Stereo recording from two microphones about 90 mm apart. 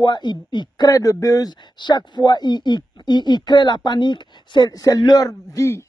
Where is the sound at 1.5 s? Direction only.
55° left (ahead or behind).